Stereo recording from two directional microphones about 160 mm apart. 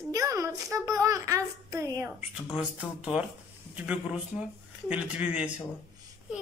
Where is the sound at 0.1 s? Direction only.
20° right (ahead or behind).